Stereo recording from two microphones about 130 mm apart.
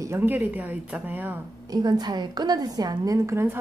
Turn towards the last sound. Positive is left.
turn(degrees=-20)  # may be behind; listen again after turning